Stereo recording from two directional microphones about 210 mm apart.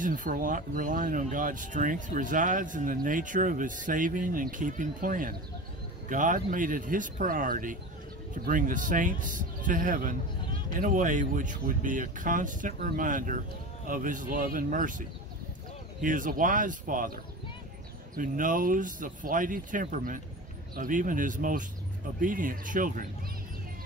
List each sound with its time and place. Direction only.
0.0 s speech: 40° right (ahead or behind)